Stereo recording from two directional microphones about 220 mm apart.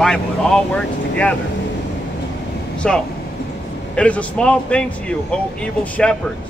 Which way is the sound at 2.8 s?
5° left (ahead or behind).